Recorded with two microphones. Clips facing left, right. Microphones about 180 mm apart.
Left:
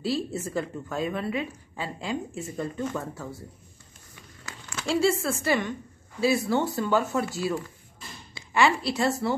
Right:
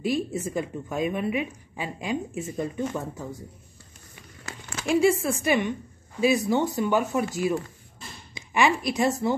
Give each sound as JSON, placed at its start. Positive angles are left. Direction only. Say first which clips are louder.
{"t": 0.0, "sound": "a woman's voice", "louder": "right 2 dB", "side_deg": -15}
{"t": 4.8, "sound": "a woman's voice", "louder": "right 3 dB", "side_deg": -15}
{"t": 8.4, "sound": "speech", "louder": "even", "side_deg": -15}